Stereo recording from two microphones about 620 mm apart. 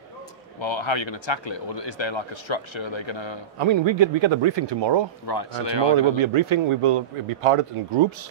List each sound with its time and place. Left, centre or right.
0.6 s speech: left
3.5 s speech: right
5.2 s speech: left
6.1 s speech: right